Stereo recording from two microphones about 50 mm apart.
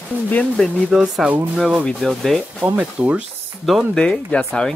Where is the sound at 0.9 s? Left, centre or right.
Centre.